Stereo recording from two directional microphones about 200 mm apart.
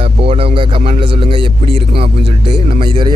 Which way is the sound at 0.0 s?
30° right (ahead or behind).